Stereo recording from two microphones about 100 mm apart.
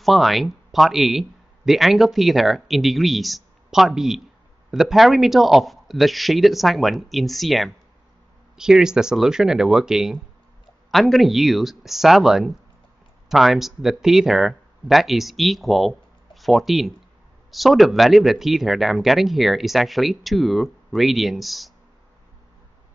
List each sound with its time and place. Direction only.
0.0 s speech: centre (ahead or behind)